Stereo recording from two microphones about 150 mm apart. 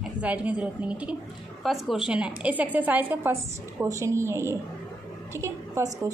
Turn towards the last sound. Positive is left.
turn(degrees=-20)  # may be behind; listen again after turning